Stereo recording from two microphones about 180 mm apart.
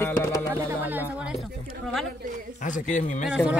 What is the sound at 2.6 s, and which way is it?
Speech, 40° left (ahead or behind).